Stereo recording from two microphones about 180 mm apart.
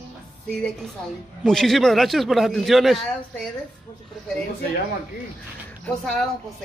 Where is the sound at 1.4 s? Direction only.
5° left (ahead or behind).